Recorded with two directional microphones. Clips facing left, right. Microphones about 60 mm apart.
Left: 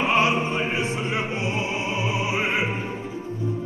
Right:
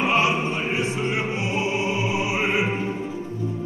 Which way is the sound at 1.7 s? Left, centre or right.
Left.